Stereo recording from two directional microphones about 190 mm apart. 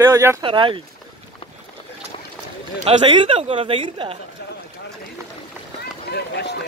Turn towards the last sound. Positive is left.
turn(degrees=60)  # may be behind; listen again after turning